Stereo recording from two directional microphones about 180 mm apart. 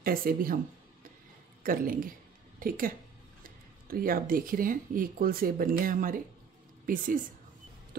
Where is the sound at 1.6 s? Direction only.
50° right (ahead or behind).